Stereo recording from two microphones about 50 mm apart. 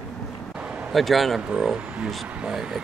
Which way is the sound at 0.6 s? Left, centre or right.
Right.